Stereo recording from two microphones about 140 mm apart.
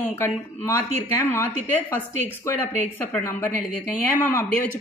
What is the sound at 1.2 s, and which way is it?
Speech, 15° left (ahead or behind).